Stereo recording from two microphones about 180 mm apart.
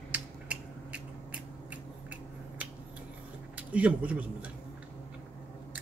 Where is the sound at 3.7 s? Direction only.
10° right (ahead or behind).